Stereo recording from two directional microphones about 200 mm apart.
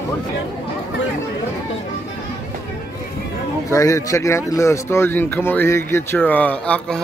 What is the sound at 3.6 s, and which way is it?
Speech, 15° left (ahead or behind).